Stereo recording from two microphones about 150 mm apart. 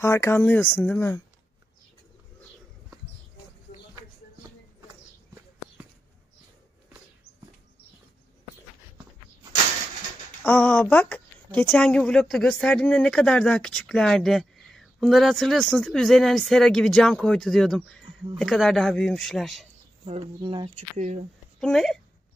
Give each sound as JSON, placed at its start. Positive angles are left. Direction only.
{"t": 0.0, "sound": "speech", "side_deg": 20}
{"t": 10.4, "sound": "a woman's voice", "side_deg": 10}
{"t": 20.3, "sound": "speech", "side_deg": -30}
{"t": 20.7, "sound": "speech", "side_deg": -50}
{"t": 21.5, "sound": "speech", "side_deg": 5}